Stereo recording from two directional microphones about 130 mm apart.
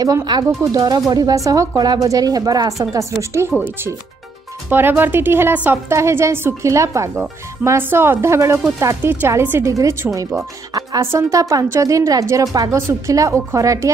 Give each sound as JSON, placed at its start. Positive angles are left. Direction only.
{"t": 0.0, "sound": "speech", "side_deg": -30}
{"t": 4.6, "sound": "a woman's voice", "side_deg": -15}